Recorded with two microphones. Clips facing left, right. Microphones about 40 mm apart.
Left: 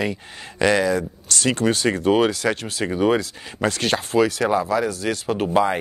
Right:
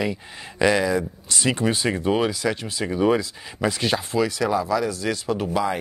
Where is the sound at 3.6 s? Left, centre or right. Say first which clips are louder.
Left 1 dB; left.